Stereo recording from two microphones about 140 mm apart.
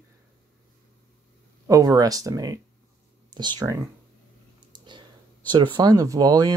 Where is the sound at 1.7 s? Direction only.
25° right (ahead or behind).